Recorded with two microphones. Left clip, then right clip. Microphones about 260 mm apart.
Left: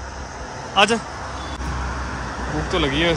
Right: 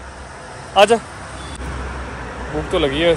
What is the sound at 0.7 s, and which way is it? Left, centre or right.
Speech, centre.